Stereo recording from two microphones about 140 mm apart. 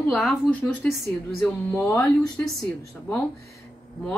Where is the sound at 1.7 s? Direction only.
20° left (ahead or behind).